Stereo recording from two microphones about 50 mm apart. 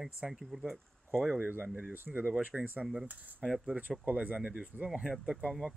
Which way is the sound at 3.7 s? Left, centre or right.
Right.